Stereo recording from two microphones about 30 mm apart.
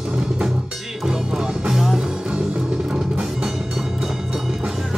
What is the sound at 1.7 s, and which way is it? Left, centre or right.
Music, centre.